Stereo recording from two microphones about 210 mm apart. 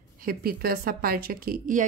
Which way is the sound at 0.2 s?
45° right (ahead or behind).